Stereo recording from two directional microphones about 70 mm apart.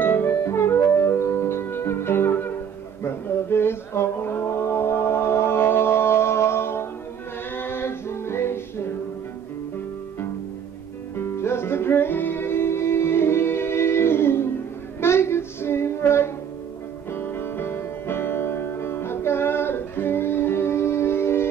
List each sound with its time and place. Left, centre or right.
0.0 s music: left
3.0 s mantra: left
7.5 s music: left
11.1 s music: left
15.0 s child singing: left
17.1 s music: left